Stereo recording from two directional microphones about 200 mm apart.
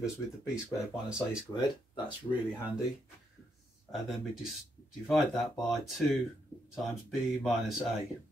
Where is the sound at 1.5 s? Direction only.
25° left (ahead or behind).